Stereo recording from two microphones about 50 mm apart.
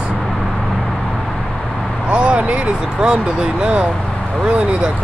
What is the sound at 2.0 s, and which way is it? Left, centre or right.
Speech, right.